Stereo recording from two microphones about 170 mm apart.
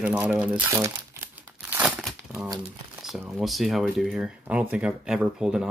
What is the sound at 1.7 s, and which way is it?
Crumpling, 5° right (ahead or behind).